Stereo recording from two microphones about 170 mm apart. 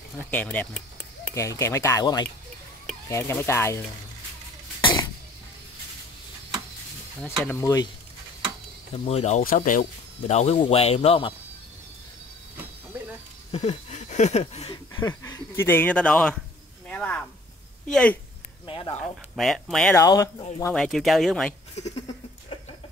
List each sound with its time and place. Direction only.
0.2 s speech: 10° left (ahead or behind)
7.4 s speech: 20° left (ahead or behind)
8.9 s speech: 40° left (ahead or behind)
9.4 s speech: 55° left (ahead or behind); by 11.3 s 35° left (ahead or behind)
13.5 s a sound: 40° left (ahead or behind)
15.0 s speech: 25° left (ahead or behind); by 16.3 s 5° left (ahead or behind)
16.8 s a sound: 5° left (ahead or behind)
17.8 s speech: 5° left (ahead or behind)
19.3 s speech: centre (ahead or behind)
20.0 s speech: 20° left (ahead or behind)
20.7 s speech: centre (ahead or behind)
21.7 s a sound: 40° left (ahead or behind)